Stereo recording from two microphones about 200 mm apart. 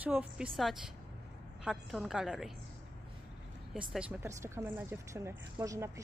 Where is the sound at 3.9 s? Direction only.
5° right (ahead or behind).